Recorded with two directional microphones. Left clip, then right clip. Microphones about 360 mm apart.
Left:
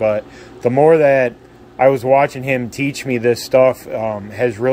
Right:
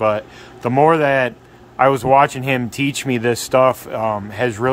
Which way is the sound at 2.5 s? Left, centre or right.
Centre.